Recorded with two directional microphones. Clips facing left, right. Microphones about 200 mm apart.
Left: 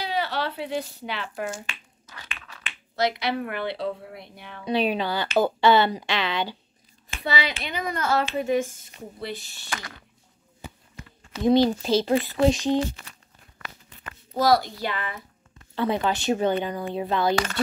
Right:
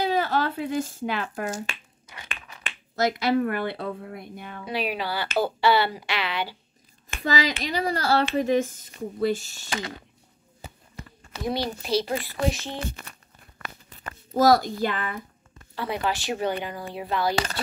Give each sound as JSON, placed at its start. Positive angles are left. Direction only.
{"t": 0.0, "sound": "speech", "side_deg": -45}
{"t": 4.6, "sound": "speech", "side_deg": 25}
{"t": 7.2, "sound": "speech", "side_deg": -40}
{"t": 9.7, "sound": "a sound", "side_deg": -25}
{"t": 11.3, "sound": "speech", "side_deg": -60}
{"t": 11.8, "sound": "speech", "side_deg": 25}
{"t": 12.8, "sound": "speech", "side_deg": -55}
{"t": 13.6, "sound": "a sound", "side_deg": -40}
{"t": 15.7, "sound": "speech", "side_deg": 25}